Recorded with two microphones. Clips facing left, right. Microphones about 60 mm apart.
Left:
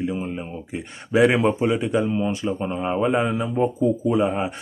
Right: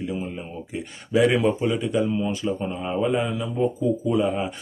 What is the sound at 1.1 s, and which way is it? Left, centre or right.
Speech, left.